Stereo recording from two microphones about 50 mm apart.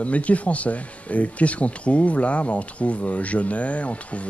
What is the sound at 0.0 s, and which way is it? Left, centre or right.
Speech, left.